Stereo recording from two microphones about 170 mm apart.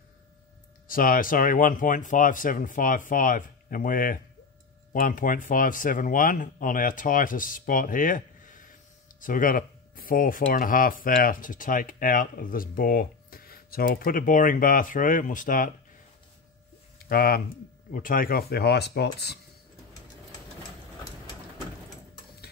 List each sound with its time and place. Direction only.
0.8 s speech: 55° left (ahead or behind)
17.1 s speech: 60° left (ahead or behind)